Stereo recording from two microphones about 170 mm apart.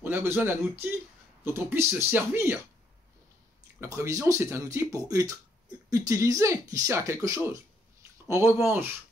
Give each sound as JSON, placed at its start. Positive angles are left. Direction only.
{"t": 0.0, "sound": "speech", "side_deg": -15}
{"t": 3.8, "sound": "speech", "side_deg": -15}